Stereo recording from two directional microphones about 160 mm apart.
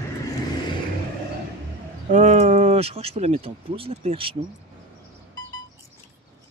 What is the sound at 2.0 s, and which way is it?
Speech, 45° right (ahead or behind).